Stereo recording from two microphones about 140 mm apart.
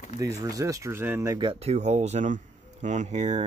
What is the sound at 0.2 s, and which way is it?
Speech, 25° right (ahead or behind).